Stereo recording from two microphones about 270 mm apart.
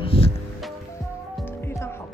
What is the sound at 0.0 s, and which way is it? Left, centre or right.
Music, left.